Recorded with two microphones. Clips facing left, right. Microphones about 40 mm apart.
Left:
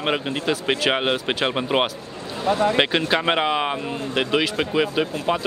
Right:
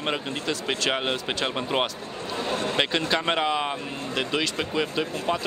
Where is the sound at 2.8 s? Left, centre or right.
Left.